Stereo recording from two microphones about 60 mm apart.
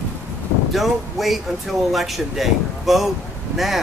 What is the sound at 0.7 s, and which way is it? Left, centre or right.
Speech, centre.